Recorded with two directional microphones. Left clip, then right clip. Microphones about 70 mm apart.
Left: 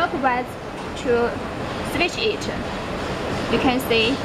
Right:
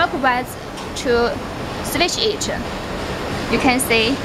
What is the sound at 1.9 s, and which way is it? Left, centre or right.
Speech, right.